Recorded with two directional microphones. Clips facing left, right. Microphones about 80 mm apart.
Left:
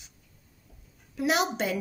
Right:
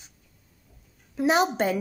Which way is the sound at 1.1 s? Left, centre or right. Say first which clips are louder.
Right 4 dB; right.